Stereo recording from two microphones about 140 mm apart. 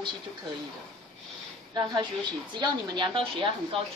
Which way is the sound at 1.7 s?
30° right (ahead or behind).